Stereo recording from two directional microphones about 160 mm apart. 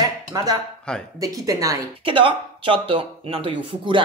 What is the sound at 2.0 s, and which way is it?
Speech, 30° right (ahead or behind).